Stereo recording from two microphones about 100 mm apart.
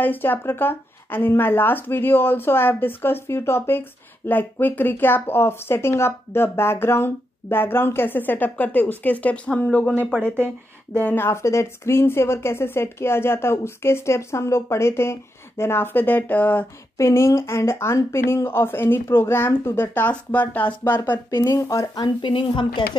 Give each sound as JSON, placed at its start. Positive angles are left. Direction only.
{"t": 0.0, "sound": "speech", "side_deg": 20}
{"t": 11.0, "sound": "speech", "side_deg": 20}
{"t": 22.3, "sound": "a woman's voice", "side_deg": 55}